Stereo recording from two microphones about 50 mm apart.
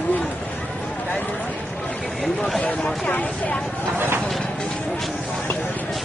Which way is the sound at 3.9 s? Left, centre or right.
Right.